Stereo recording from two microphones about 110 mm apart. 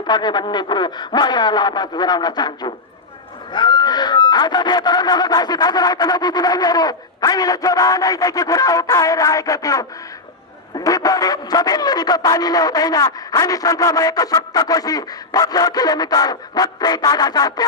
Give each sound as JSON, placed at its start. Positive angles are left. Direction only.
{"t": 0.0, "sound": "speech", "side_deg": 40}